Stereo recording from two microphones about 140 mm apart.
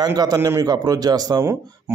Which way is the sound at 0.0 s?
30° right (ahead or behind).